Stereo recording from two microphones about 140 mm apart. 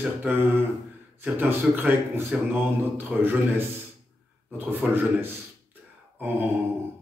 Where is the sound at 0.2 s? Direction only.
15° right (ahead or behind).